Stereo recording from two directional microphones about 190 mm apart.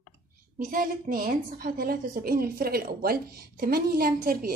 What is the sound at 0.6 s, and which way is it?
A woman's voice, 45° right (ahead or behind).